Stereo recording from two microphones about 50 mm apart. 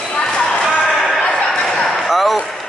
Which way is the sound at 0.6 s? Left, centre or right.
Centre.